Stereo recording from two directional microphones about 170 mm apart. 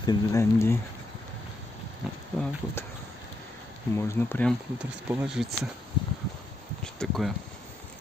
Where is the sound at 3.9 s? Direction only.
15° left (ahead or behind).